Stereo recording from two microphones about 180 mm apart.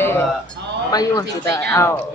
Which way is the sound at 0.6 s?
75° right (ahead or behind).